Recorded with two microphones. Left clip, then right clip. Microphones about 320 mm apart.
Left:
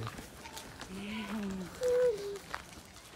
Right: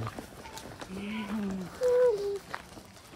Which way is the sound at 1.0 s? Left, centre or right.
Centre.